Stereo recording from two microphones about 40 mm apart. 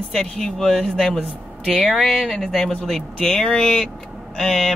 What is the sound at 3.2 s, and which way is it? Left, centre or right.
Speech, centre.